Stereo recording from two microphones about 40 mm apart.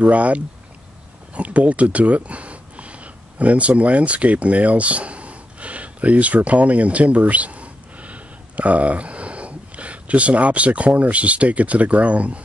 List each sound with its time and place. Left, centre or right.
0.0 s speech: right